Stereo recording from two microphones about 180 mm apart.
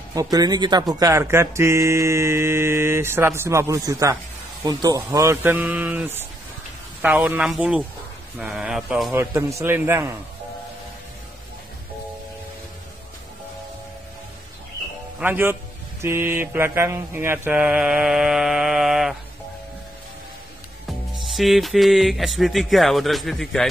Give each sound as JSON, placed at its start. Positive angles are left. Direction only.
{"t": 0.1, "sound": "speech", "side_deg": -20}
{"t": 9.1, "sound": "speech", "side_deg": -15}
{"t": 15.1, "sound": "speech", "side_deg": -10}
{"t": 20.8, "sound": "speech", "side_deg": 0}